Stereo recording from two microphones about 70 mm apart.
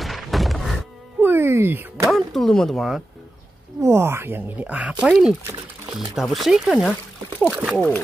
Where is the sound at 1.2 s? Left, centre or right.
Right.